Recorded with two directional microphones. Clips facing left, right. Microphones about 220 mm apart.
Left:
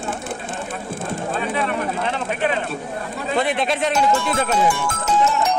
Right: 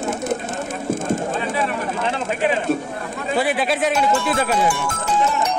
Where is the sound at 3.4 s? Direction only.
5° right (ahead or behind).